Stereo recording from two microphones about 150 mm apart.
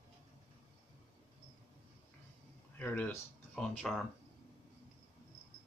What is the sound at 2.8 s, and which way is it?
Speech, 10° left (ahead or behind).